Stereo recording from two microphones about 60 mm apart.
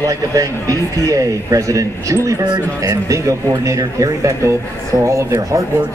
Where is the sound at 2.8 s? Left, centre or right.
Right.